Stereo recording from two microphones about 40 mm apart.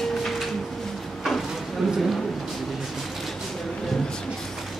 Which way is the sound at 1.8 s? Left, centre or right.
Centre.